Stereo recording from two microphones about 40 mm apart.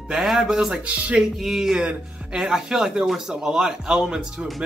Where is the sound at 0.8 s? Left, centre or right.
Right.